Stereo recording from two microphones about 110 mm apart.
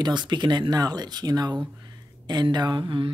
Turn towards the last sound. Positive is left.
turn(degrees=-45)  # may be behind; listen again after turning